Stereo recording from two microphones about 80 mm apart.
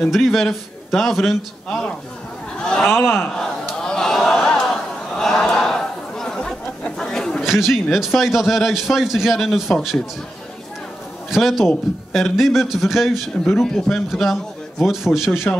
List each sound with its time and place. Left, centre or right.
0.0 s a man's voice: centre
3.3 s a sound: centre
7.4 s a man's voice: centre
11.2 s a man's voice: centre